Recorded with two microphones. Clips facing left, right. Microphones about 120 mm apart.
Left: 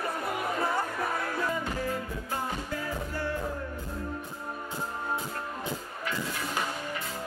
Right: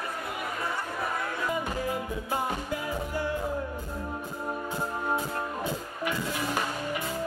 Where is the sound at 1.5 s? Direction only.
15° right (ahead or behind).